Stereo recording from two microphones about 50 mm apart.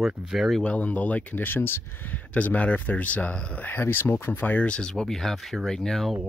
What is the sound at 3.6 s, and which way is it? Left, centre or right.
Speech, left.